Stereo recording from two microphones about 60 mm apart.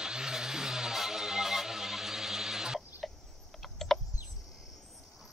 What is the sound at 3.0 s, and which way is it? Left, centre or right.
Cricket, centre.